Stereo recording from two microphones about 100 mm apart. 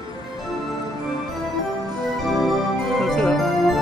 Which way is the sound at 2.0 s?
Centre (ahead or behind).